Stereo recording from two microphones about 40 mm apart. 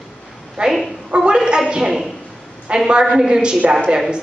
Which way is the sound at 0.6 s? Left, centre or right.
Right.